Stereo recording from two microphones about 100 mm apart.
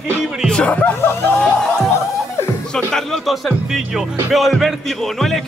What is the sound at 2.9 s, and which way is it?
Music, 5° left (ahead or behind).